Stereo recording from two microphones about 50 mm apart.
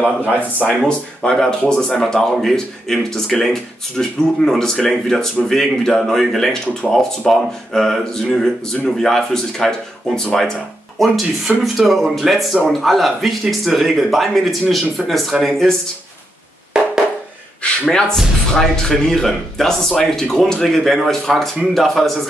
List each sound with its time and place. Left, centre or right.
0.0 s a man's voice: left
0.8 s speech: centre
11.0 s a man's voice: centre
17.6 s a sound: left
18.6 s a man's voice: centre